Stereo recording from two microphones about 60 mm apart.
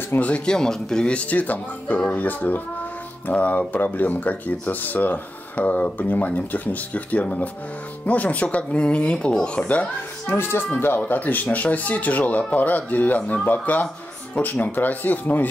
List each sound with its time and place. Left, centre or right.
0.1 s speech: left
0.5 s speech: centre
9.7 s speech: left
10.3 s speech: left